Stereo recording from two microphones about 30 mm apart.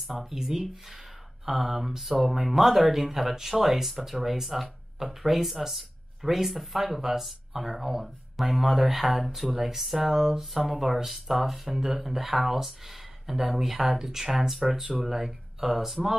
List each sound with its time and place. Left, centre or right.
0.0 s speech: centre